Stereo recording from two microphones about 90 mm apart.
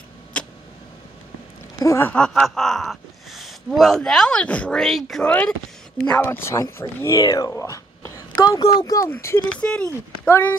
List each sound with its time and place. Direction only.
0.3 s vehicle: 15° left (ahead or behind)
1.8 s speech: 35° left (ahead or behind)
2.0 s speech: 10° left (ahead or behind)
4.8 s speech: 5° left (ahead or behind)
6.0 s speech: 20° left (ahead or behind)
8.4 s speech: 55° left (ahead or behind)
9.6 s speech: 10° left (ahead or behind)
10.2 s speech: 25° left (ahead or behind)